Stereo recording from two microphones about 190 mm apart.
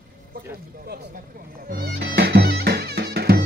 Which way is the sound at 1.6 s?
55° right (ahead or behind).